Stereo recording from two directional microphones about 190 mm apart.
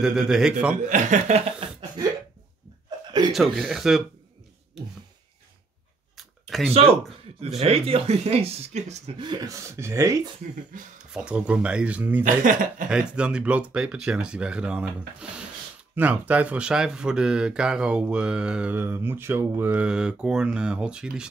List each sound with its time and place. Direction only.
0.0 s speech: 5° right (ahead or behind)
0.8 s speech: 40° right (ahead or behind)
3.1 s a sound: 20° right (ahead or behind)
3.3 s speech: centre (ahead or behind)
4.8 s a sound: 5° right (ahead or behind)
6.1 s a sound: centre (ahead or behind)
7.3 s speech: 30° right (ahead or behind)
9.2 s speech: 20° right (ahead or behind)
10.7 s speech: 45° right (ahead or behind)
11.1 s speech: 5° right (ahead or behind)
12.4 s speech: 45° right (ahead or behind)
12.9 s speech: 5° right (ahead or behind)